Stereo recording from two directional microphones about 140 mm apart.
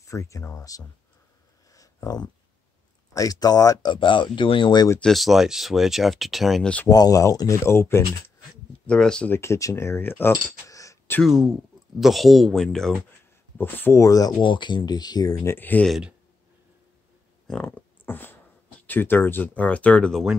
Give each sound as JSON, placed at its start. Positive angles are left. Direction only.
{"t": 0.0, "sound": "speech", "side_deg": 20}
{"t": 1.7, "sound": "a sound", "side_deg": 25}
{"t": 3.1, "sound": "speech", "side_deg": 25}
{"t": 5.0, "sound": "speech", "side_deg": 0}
{"t": 6.9, "sound": "speech", "side_deg": 25}
{"t": 8.8, "sound": "speech", "side_deg": 5}
{"t": 9.4, "sound": "speech", "side_deg": 20}
{"t": 10.7, "sound": "a sound", "side_deg": 25}
{"t": 11.2, "sound": "speech", "side_deg": -5}
{"t": 13.6, "sound": "speech", "side_deg": 15}
{"t": 14.4, "sound": "speech", "side_deg": 35}
{"t": 15.5, "sound": "speech", "side_deg": 10}
{"t": 15.9, "sound": "speech", "side_deg": -5}
{"t": 17.5, "sound": "speech", "side_deg": 10}